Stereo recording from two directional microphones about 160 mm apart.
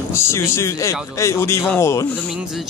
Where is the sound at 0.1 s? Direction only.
15° left (ahead or behind).